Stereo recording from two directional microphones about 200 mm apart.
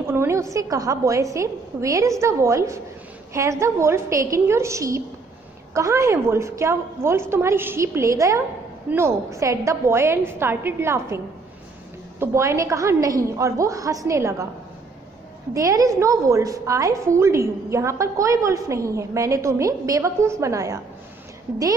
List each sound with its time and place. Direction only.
0.1 s a woman's voice: 10° right (ahead or behind)
12.2 s a woman's voice: 15° right (ahead or behind)
15.5 s a woman's voice: 15° right (ahead or behind)